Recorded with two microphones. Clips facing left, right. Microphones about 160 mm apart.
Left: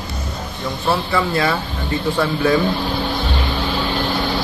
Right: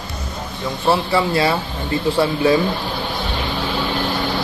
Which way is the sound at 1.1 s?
30° right (ahead or behind).